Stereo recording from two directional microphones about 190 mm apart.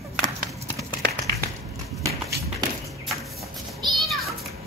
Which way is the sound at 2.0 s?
15° right (ahead or behind).